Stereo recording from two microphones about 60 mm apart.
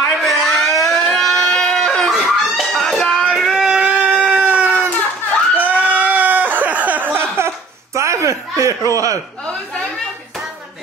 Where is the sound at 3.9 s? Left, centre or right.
Right.